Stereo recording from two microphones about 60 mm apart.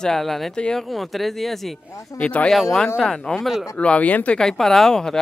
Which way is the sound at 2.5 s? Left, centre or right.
Centre.